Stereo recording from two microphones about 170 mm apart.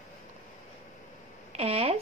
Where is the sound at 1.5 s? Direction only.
35° right (ahead or behind).